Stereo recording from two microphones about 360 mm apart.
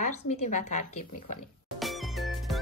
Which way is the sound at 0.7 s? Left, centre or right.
Left.